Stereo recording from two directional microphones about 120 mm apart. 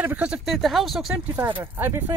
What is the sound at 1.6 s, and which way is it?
Speech, 15° right (ahead or behind).